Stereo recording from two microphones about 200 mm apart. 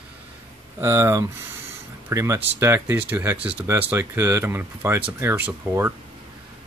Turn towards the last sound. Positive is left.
turn(degrees=-10)  # may be behind; listen again after turning